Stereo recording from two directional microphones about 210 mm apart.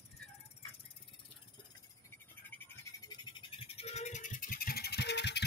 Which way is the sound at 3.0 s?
20° left (ahead or behind).